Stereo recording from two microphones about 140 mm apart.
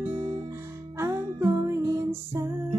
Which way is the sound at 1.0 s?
25° right (ahead or behind).